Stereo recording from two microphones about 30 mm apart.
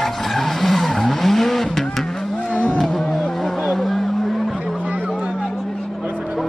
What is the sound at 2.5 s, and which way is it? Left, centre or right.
Roaring cats, left.